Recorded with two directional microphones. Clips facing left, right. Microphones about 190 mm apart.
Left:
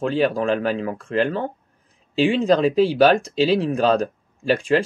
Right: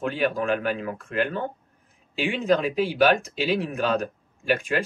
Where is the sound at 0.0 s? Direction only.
35° left (ahead or behind).